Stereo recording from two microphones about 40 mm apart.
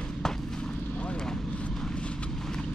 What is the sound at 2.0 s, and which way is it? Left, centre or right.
Vehicle, left.